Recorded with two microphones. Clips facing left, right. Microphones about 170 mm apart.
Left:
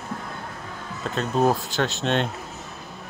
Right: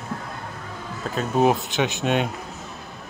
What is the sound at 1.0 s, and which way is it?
Speech, centre (ahead or behind).